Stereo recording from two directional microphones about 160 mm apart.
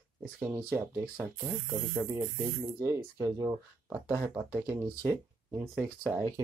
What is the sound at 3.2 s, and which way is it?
Speech, 20° right (ahead or behind).